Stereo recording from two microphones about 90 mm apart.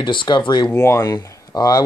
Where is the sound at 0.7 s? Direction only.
30° left (ahead or behind).